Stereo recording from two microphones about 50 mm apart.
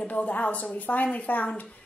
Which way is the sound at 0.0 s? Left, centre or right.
Left.